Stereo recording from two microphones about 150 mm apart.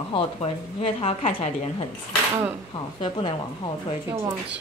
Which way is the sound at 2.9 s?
35° left (ahead or behind).